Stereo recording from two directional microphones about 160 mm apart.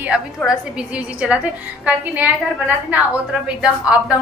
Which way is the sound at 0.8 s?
5° right (ahead or behind).